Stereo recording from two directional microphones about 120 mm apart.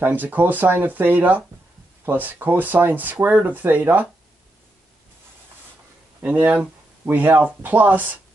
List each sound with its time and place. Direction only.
0.0 s speech: 15° right (ahead or behind)
6.2 s speech: 15° right (ahead or behind)